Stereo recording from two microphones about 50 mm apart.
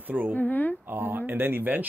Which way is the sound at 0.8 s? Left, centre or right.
Right.